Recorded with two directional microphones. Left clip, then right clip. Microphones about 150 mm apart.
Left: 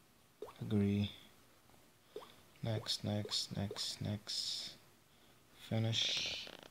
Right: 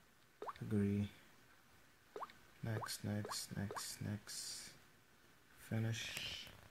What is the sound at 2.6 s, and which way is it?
Speech, 15° left (ahead or behind).